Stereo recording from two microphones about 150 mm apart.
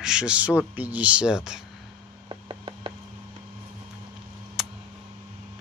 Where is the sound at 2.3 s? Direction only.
35° right (ahead or behind).